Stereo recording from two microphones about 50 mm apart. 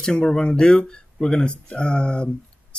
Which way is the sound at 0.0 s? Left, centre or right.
Centre.